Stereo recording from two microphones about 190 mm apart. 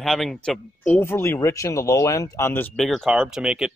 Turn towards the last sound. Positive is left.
turn(degrees=0)  # may be behind; listen again after turning